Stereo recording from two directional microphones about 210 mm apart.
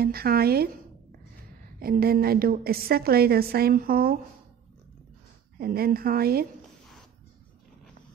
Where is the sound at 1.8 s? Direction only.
45° right (ahead or behind).